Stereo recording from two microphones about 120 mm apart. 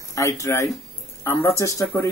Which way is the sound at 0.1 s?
25° left (ahead or behind).